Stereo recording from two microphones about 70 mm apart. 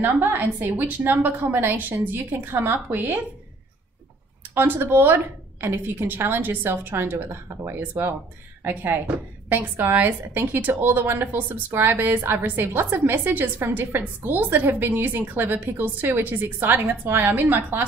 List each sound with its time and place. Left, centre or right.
0.0 s a woman's voice: right
4.6 s a woman's voice: right